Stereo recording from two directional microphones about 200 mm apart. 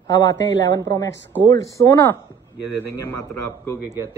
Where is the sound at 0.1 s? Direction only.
20° left (ahead or behind).